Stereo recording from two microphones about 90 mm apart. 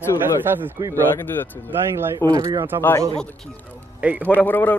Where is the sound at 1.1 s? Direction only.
20° left (ahead or behind).